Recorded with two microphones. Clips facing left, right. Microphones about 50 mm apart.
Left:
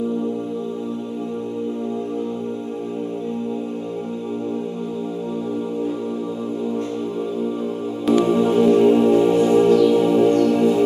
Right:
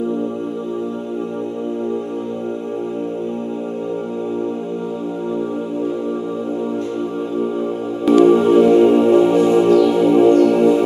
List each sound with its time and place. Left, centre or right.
8.3 s music: right
9.2 s music: centre